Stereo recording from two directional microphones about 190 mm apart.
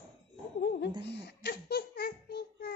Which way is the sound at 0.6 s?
60° left (ahead or behind).